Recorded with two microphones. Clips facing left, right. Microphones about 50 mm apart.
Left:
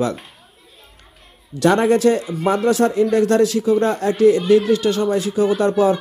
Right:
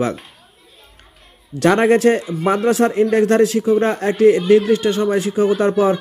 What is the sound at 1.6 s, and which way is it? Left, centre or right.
Speech, right.